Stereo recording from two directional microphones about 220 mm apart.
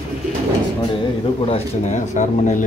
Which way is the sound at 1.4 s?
30° left (ahead or behind).